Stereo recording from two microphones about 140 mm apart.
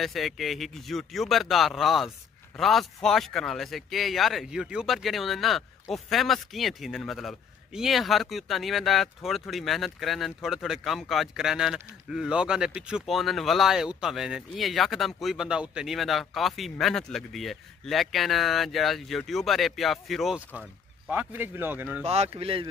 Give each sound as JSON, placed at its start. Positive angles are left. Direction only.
{"t": 0.0, "sound": "a man's voice", "side_deg": 0}
{"t": 21.1, "sound": "a man's voice", "side_deg": -10}
{"t": 22.0, "sound": "speech", "side_deg": -50}